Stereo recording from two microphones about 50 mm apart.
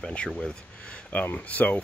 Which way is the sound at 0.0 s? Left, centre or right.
Left.